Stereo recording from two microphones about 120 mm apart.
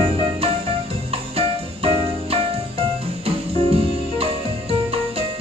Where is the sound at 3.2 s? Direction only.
55° right (ahead or behind).